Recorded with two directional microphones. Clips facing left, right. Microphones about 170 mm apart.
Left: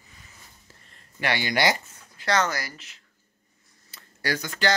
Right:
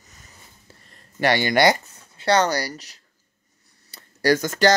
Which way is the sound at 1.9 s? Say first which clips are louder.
Right 6 dB; 30° right (ahead or behind).